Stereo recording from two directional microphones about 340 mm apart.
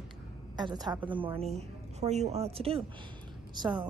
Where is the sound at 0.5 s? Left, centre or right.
Centre.